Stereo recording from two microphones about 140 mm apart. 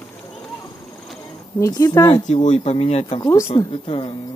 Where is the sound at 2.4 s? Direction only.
50° left (ahead or behind).